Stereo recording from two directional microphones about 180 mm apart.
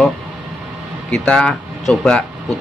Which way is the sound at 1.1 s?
5° left (ahead or behind).